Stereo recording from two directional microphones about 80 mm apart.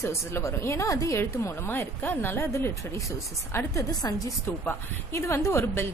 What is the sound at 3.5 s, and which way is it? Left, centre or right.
Speech, left.